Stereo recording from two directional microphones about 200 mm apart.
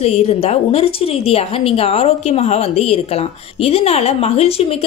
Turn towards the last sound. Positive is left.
turn(degrees=30)  # may be behind; listen again after turning